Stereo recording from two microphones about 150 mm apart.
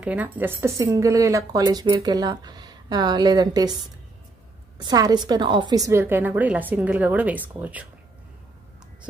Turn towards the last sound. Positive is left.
turn(degrees=-10)  # may be behind; listen again after turning